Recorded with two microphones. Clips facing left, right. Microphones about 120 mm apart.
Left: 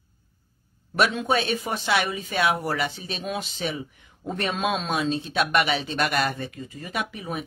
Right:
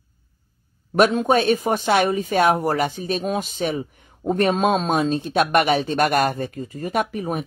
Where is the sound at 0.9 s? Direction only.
45° right (ahead or behind).